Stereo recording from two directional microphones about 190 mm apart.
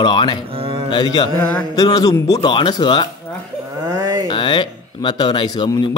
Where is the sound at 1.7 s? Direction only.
20° left (ahead or behind).